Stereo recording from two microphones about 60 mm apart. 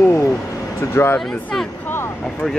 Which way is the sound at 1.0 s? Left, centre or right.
Left.